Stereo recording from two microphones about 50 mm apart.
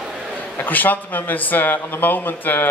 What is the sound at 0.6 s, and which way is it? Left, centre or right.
A woman's voice, left.